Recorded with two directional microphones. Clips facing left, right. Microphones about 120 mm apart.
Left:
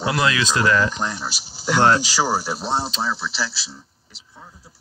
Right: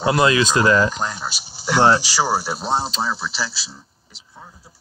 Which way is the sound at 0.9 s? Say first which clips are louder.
Even; 40° right (ahead or behind).